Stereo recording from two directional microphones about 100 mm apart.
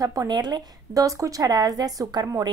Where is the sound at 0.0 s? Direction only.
40° right (ahead or behind).